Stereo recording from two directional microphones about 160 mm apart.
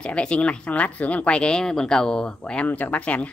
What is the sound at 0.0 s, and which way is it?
Speech, 5° left (ahead or behind).